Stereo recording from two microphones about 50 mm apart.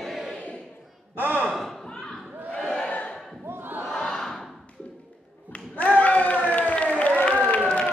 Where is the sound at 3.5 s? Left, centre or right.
Right.